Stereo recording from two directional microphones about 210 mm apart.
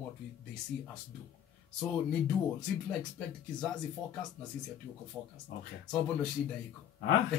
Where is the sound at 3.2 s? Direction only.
5° left (ahead or behind).